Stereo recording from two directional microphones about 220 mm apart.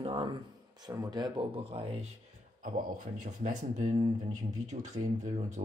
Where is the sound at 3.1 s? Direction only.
35° right (ahead or behind).